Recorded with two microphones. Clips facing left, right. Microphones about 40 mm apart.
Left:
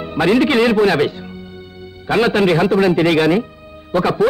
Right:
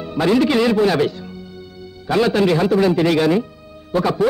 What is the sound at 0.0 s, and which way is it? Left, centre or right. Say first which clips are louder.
A man's voice: left 2 dB; left.